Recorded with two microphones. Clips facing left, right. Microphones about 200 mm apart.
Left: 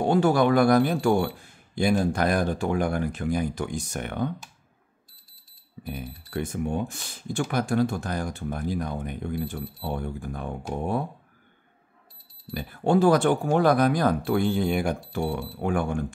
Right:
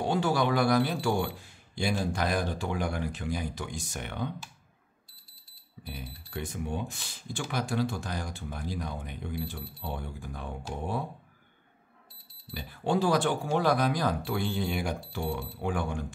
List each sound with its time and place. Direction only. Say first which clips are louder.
0.0 s speech: left 7 dB; 55° left (ahead or behind)
5.9 s speech: left 7 dB; 50° left (ahead or behind)
12.4 s speech: left 6 dB; 50° left (ahead or behind)